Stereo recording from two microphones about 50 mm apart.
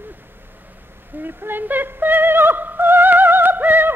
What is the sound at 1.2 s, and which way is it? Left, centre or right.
Music, right.